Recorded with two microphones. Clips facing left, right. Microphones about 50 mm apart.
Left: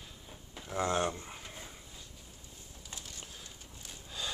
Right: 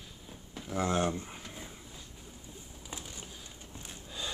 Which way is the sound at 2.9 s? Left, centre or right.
Right.